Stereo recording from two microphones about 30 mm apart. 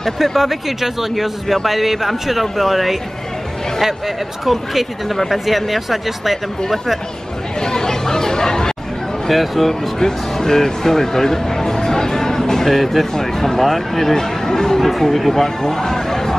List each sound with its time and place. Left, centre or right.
0.2 s speech: centre
4.5 s speech: centre
7.6 s chatter: centre
9.3 s speech: centre
9.9 s speech: centre
14.8 s speech: centre
15.3 s a sound: centre